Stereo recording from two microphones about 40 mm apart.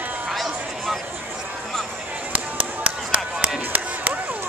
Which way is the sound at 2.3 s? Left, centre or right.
Right.